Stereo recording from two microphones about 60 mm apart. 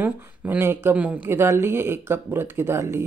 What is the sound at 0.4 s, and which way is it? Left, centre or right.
Speech, right.